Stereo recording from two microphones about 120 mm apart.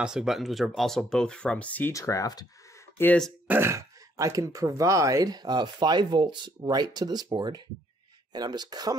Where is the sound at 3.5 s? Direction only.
20° right (ahead or behind).